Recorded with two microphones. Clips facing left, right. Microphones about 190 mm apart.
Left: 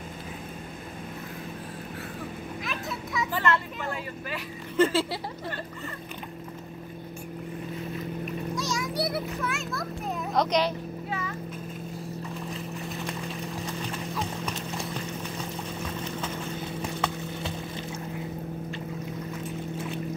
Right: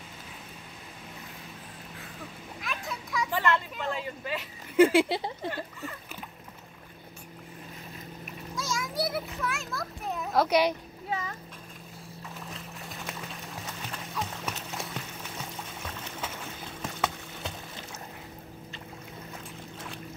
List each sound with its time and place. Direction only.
2.6 s a sound: centre (ahead or behind)
3.3 s speech: 15° right (ahead or behind)
4.7 s speech: 15° right (ahead or behind)
8.5 s children playing: centre (ahead or behind)
13.7 s clip-clop: 5° right (ahead or behind)